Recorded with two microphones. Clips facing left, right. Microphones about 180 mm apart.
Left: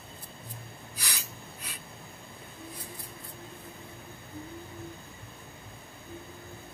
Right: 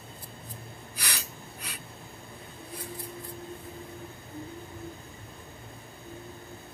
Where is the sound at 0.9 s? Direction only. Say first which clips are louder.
Right 3 dB; 70° right (ahead or behind).